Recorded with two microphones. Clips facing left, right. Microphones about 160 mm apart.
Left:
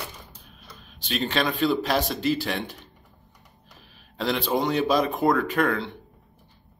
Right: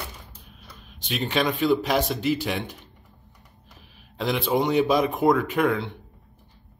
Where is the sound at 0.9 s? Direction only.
20° right (ahead or behind).